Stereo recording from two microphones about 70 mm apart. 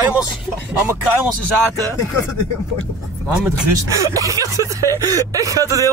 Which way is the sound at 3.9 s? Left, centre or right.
Right.